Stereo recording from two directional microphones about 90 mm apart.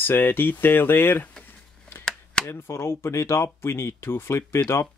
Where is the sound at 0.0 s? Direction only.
25° left (ahead or behind).